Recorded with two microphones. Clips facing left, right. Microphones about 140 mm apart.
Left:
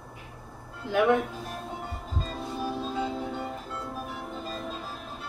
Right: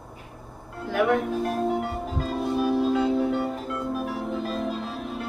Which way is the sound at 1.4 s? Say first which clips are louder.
Right 12 dB; 75° right (ahead or behind).